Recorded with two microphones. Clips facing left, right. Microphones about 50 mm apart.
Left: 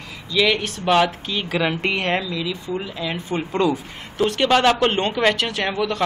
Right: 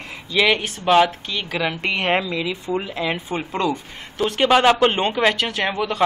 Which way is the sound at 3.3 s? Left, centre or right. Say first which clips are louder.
Left 2 dB; centre.